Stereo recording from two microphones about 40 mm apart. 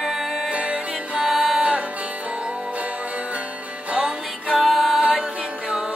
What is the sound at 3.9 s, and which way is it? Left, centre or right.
Music, right.